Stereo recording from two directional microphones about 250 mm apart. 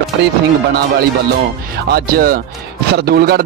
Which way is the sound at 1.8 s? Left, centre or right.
Right.